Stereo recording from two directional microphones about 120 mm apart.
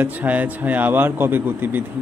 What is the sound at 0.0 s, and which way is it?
A man's voice, 15° right (ahead or behind).